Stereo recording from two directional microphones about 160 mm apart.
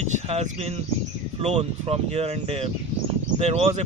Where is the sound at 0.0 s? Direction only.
40° right (ahead or behind).